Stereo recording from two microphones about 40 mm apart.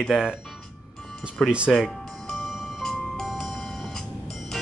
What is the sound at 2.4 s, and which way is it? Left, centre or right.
Music, centre.